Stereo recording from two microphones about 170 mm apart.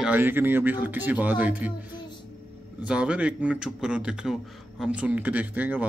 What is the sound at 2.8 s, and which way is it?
A man's voice, 5° right (ahead or behind).